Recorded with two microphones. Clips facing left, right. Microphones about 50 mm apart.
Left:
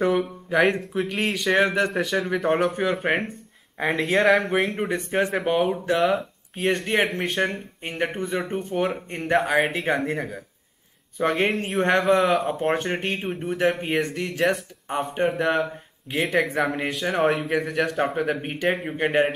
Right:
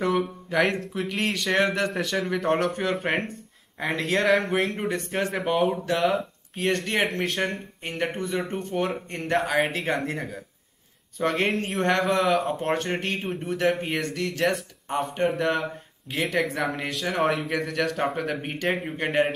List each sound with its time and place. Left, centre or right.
0.0 s speech: centre
5.4 s speech: centre
15.2 s speech: centre